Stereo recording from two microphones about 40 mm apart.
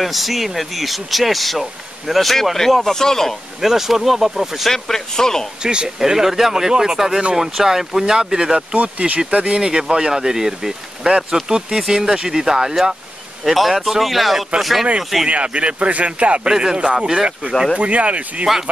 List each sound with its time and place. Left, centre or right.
0.0 s speech: centre
3.6 s speech: centre
4.6 s speech: centre
5.6 s speech: right
5.9 s speech: centre
8.7 s speech: right; by 14.9 s centre
15.2 s speech: right
16.4 s speech: centre
17.7 s speech: right